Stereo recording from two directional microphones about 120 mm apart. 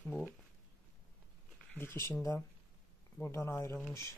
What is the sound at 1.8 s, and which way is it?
Speech, 20° left (ahead or behind).